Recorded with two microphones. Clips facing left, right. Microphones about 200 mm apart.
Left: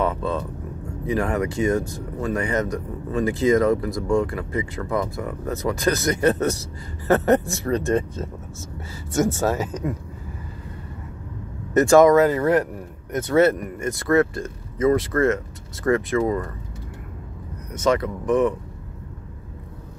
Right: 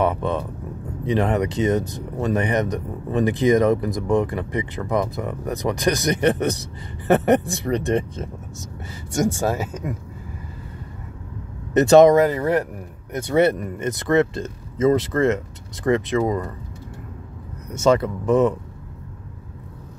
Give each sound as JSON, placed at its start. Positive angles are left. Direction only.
{"t": 0.0, "sound": "speech", "side_deg": -15}
{"t": 11.7, "sound": "speech", "side_deg": -20}
{"t": 17.7, "sound": "speech", "side_deg": -25}